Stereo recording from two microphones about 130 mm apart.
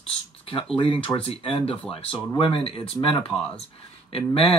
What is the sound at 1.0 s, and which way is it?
Speech, 45° left (ahead or behind).